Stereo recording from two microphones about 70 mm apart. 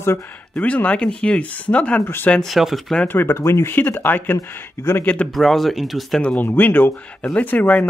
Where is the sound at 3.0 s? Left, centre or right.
Left.